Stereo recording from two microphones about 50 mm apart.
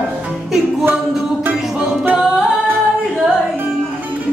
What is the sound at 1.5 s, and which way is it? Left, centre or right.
Music, centre.